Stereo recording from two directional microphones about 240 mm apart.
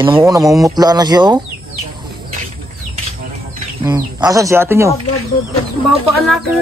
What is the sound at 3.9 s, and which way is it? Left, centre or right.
Speech, centre.